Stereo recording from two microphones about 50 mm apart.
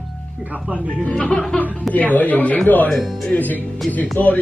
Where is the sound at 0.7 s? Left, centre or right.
Right.